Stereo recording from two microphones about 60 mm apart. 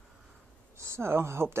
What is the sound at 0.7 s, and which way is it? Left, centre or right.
Speech, right.